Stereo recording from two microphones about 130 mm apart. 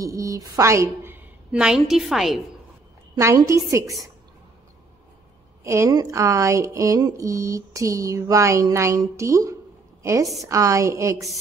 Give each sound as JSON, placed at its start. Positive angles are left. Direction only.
{"t": 0.0, "sound": "a woman's voice", "side_deg": -25}
{"t": 3.2, "sound": "speech", "side_deg": -25}
{"t": 5.6, "sound": "speech", "side_deg": -20}